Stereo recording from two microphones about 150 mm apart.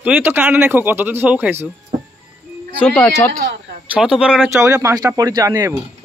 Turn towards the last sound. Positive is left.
turn(degrees=-20)  # may be behind; listen again after turning